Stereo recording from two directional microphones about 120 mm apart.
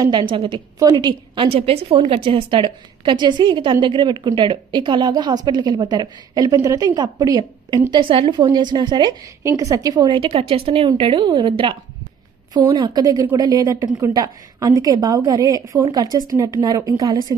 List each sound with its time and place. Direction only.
0.0 s a woman's voice: 40° right (ahead or behind)
0.7 s a woman's voice: 30° right (ahead or behind)
7.9 s a woman's voice: 45° right (ahead or behind)
9.4 s a woman's voice: 25° right (ahead or behind)